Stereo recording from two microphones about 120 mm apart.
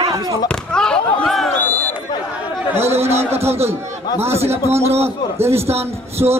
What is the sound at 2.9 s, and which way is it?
Speech, 60° right (ahead or behind).